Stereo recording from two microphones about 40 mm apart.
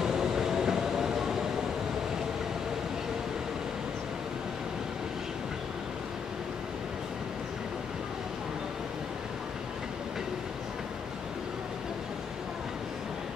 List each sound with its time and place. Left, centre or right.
0.0 s train: centre